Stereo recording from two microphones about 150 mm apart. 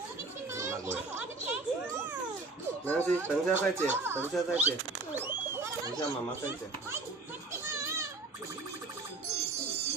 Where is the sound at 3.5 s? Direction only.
15° right (ahead or behind).